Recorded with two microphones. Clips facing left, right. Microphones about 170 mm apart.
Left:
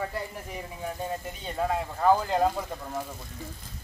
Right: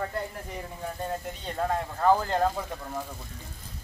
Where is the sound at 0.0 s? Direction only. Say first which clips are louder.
Right 1 dB; 5° left (ahead or behind).